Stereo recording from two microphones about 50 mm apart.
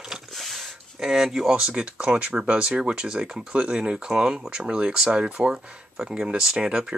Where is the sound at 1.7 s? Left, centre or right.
Right.